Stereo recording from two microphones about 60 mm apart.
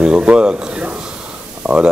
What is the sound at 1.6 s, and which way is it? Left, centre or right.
Speech, centre.